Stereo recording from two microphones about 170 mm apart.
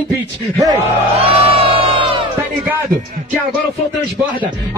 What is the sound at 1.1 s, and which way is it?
Crowd, 35° right (ahead or behind).